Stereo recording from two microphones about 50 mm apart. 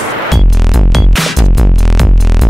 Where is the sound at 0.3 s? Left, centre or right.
Centre.